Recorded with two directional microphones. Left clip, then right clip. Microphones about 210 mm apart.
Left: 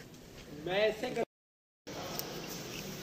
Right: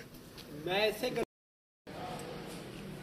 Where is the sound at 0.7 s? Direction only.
45° right (ahead or behind).